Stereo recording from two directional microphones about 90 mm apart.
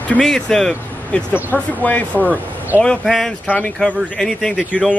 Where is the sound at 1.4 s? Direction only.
20° left (ahead or behind).